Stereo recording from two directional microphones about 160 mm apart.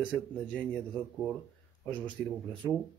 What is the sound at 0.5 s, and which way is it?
Speech, 10° left (ahead or behind).